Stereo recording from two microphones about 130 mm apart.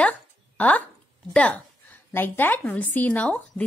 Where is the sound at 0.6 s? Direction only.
10° left (ahead or behind).